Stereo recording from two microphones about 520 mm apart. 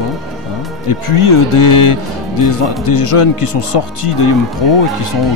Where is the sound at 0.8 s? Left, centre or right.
Left.